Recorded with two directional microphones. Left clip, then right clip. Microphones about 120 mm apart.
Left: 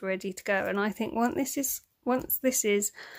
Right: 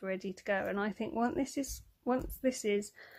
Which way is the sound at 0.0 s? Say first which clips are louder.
Left 6 dB; 25° left (ahead or behind).